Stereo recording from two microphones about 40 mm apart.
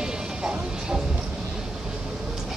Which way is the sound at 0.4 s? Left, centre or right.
Right.